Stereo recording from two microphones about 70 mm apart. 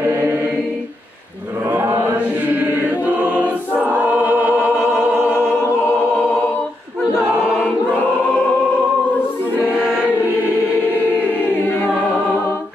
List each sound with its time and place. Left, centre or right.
0.1 s choir: right
1.7 s chant: right
2.1 s choir: right
9.8 s choir: centre
10.9 s choir: left